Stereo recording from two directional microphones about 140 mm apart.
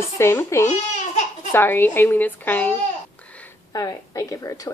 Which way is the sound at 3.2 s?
10° left (ahead or behind).